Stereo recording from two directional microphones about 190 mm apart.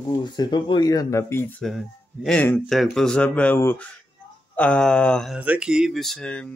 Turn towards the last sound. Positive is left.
turn(degrees=5)  # may be behind; listen again after turning